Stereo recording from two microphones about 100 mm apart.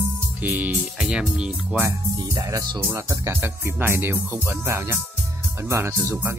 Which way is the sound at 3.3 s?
20° right (ahead or behind).